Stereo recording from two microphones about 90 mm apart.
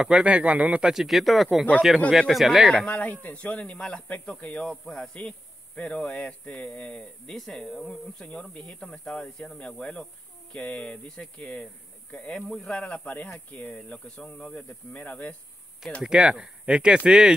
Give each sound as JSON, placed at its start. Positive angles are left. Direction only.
{"t": 0.0, "sound": "speech", "side_deg": -10}
{"t": 16.0, "sound": "speech", "side_deg": -10}